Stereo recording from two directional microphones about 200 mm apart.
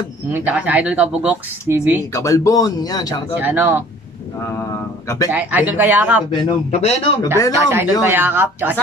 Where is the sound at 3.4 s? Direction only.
10° right (ahead or behind).